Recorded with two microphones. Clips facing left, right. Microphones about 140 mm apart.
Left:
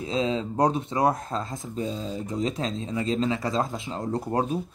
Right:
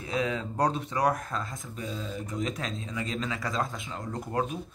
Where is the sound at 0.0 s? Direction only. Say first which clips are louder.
Left 4 dB; 25° left (ahead or behind).